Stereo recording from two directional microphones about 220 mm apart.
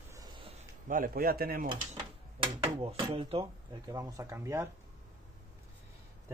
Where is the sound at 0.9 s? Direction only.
40° right (ahead or behind).